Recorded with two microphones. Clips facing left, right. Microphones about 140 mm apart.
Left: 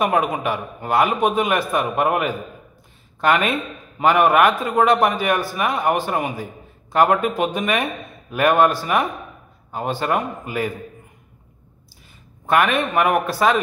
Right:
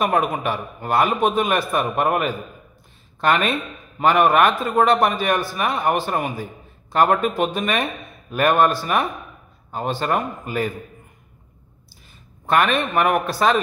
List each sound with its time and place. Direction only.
0.0 s a man's voice: 15° left (ahead or behind)
12.7 s a man's voice: 15° left (ahead or behind)